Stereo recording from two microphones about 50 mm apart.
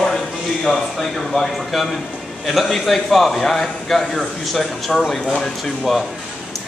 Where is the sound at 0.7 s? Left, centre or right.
Centre.